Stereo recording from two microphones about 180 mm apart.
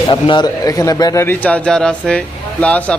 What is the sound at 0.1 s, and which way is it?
A man's voice, 25° left (ahead or behind).